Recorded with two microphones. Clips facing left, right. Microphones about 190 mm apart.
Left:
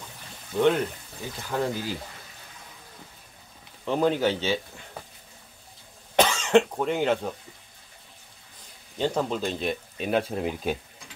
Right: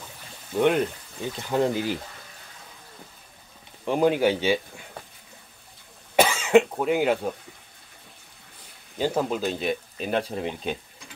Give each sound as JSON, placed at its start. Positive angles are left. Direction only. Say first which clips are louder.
{"t": 0.6, "sound": "speech", "louder": "right 1 dB", "side_deg": -15}
{"t": 3.8, "sound": "speech", "louder": "right 2 dB", "side_deg": -10}
{"t": 6.1, "sound": "speech", "louder": "right 2 dB", "side_deg": -10}
{"t": 8.9, "sound": "speech", "louder": "right 1 dB", "side_deg": -5}